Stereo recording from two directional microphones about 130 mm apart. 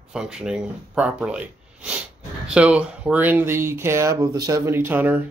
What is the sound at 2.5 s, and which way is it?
Speech, 10° right (ahead or behind).